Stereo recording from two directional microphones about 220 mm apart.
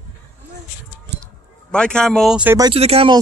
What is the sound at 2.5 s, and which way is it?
Speech, 25° right (ahead or behind).